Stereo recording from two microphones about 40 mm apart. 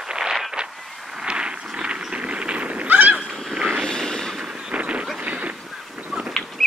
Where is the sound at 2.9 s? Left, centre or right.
Right.